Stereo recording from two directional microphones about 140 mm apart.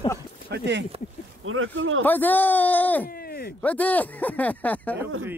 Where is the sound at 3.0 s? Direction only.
90° left.